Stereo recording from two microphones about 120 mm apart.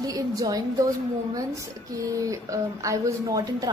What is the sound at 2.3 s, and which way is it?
A woman's voice, 25° right (ahead or behind).